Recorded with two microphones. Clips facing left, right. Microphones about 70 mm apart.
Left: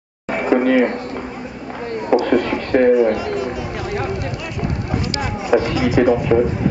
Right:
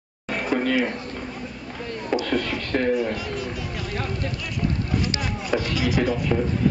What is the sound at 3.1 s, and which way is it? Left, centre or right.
Speech, centre.